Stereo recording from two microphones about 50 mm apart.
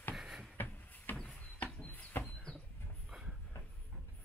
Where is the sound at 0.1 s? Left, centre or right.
Centre.